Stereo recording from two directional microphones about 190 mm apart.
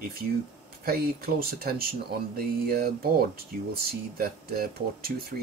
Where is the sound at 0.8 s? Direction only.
50° right (ahead or behind).